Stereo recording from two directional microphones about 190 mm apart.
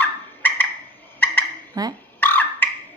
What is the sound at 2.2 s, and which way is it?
Beatboxing, 10° left (ahead or behind).